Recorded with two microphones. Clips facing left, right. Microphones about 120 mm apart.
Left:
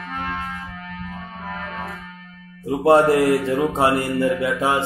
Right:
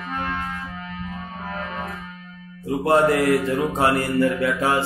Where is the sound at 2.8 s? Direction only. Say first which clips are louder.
Left 3 dB; 30° left (ahead or behind).